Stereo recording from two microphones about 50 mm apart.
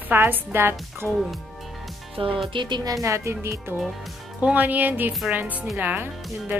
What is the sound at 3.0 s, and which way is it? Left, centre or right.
Speech, right.